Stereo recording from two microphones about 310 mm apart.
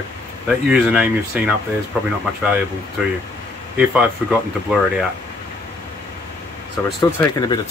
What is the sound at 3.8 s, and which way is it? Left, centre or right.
Speech, centre.